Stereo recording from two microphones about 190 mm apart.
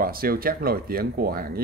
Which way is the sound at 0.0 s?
50° right (ahead or behind).